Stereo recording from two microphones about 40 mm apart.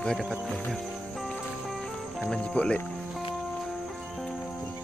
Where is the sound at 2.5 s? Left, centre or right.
Left.